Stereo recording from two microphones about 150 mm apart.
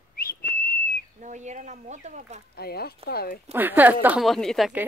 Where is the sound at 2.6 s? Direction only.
90° left.